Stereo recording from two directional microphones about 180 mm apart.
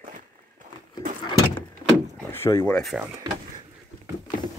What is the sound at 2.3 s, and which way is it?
Speech, 15° left (ahead or behind).